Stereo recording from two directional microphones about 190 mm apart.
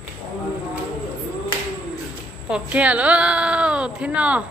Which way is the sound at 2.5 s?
5° right (ahead or behind).